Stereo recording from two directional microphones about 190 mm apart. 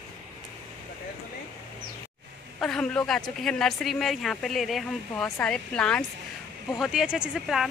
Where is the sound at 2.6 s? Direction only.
5° left (ahead or behind).